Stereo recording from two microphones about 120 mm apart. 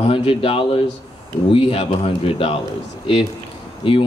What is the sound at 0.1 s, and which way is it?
Speech, 50° left (ahead or behind).